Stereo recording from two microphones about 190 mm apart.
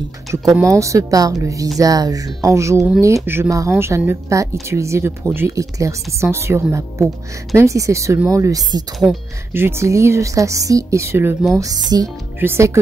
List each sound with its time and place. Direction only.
0.6 s speech: 15° right (ahead or behind)